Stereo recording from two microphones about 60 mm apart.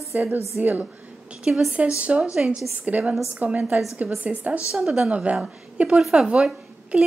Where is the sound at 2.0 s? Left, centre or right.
Centre.